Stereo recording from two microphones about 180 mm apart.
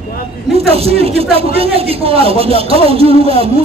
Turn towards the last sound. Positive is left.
turn(degrees=-35)  # may be behind; listen again after turning